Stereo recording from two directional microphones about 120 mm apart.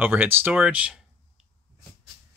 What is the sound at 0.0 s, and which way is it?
Speech, 15° right (ahead or behind).